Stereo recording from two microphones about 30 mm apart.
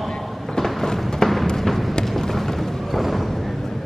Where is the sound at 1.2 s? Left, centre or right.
Left.